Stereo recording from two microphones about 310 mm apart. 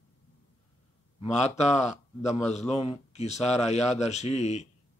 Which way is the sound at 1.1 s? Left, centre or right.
Left.